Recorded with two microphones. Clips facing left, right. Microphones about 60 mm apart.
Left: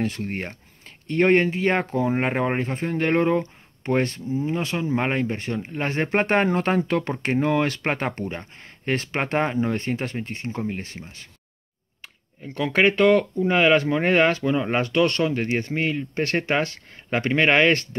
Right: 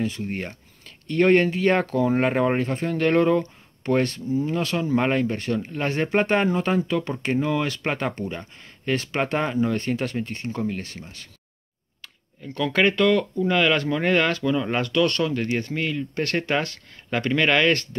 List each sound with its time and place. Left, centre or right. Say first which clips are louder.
0.0 s speech: even; left
0.4 s speech: even; left